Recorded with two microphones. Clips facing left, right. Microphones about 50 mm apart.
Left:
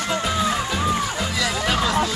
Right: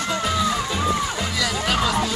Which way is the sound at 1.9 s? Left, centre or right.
Left.